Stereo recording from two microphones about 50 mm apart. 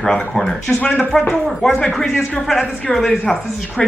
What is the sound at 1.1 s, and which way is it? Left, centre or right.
Speech, centre.